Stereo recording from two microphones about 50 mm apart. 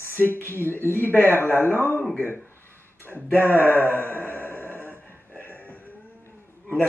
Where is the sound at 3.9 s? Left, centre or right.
Left.